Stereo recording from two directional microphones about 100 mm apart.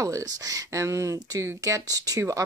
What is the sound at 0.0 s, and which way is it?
Speech, 35° right (ahead or behind).